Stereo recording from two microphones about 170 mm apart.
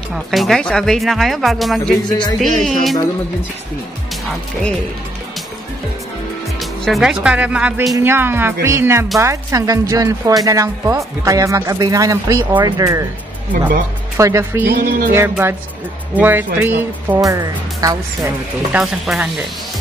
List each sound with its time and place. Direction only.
0.1 s speech: centre (ahead or behind)
6.6 s music: centre (ahead or behind)
7.2 s speech: 5° right (ahead or behind)
14.1 s speech: 15° right (ahead or behind)
14.7 s music: 55° right (ahead or behind)
15.1 s speech: 10° right (ahead or behind)
18.7 s speech: 5° right (ahead or behind)